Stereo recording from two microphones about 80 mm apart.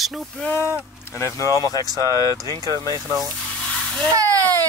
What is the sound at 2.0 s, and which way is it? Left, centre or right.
Speech, right.